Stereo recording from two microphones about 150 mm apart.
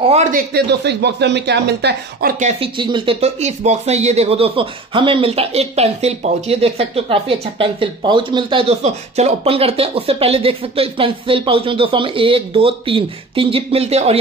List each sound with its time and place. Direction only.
0.1 s speech: 55° right (ahead or behind)
0.5 s speech: 90° right
2.8 s speech: 35° right (ahead or behind)